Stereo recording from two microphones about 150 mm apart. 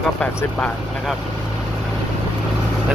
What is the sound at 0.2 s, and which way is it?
Speech, 5° left (ahead or behind).